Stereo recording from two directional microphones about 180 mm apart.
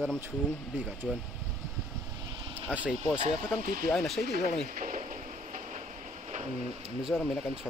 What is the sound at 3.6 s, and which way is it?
Speech, 50° right (ahead or behind).